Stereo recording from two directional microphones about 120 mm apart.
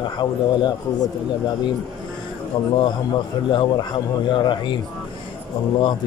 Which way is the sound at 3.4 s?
40° left (ahead or behind).